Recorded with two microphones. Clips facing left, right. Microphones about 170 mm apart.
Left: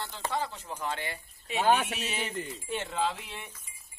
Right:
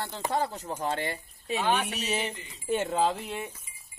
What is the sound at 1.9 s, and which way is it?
Speech, 40° right (ahead or behind).